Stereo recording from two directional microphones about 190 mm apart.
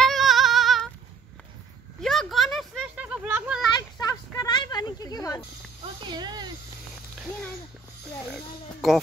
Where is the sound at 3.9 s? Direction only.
20° left (ahead or behind).